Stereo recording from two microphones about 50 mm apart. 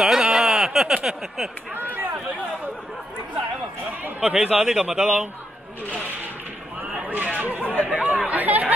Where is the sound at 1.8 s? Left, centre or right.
Right.